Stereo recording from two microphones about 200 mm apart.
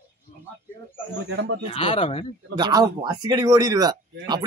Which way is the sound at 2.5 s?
20° right (ahead or behind).